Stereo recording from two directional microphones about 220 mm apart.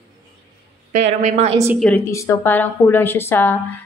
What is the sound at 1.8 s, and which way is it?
A woman's voice, 10° left (ahead or behind).